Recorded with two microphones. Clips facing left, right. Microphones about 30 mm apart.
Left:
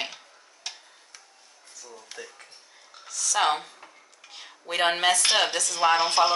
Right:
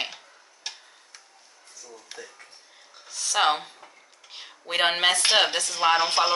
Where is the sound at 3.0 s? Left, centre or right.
Right.